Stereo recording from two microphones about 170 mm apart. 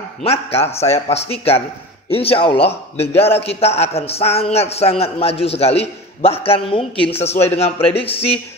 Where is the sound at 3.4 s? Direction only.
35° left (ahead or behind).